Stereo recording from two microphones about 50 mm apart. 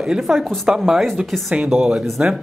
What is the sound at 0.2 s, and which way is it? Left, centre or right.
Speech, centre.